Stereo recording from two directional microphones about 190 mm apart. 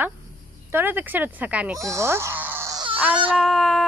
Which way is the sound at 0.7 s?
10° right (ahead or behind).